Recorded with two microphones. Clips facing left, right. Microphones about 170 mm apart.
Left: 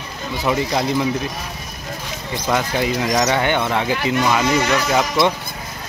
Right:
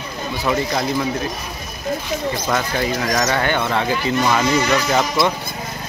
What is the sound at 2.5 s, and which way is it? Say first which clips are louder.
Speech: left 3 dB; 15° left (ahead or behind).